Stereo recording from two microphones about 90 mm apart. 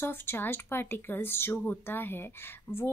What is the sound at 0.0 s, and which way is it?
Speech, 25° left (ahead or behind).